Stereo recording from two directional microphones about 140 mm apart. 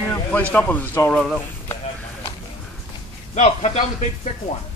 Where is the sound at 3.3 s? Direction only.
55° left (ahead or behind).